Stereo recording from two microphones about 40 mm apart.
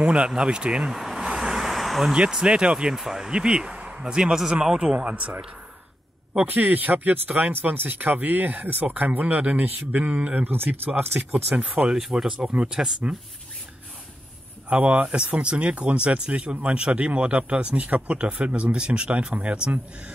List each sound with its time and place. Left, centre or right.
0.0 s speech: right; by 1.2 s centre
1.2 s vehicle: centre
2.3 s speech: right
5.0 s speech: right
6.4 s speech: right
7.5 s speech: right
10.5 s speech: right
11.5 s speech: right
12.4 s speech: right
14.7 s speech: right